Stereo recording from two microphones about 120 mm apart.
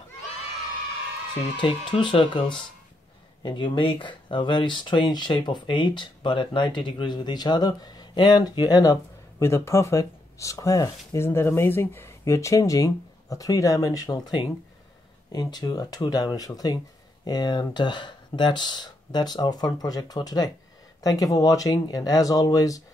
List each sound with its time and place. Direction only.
1.6 s speech: 45° left (ahead or behind)
3.4 s speech: 45° left (ahead or behind)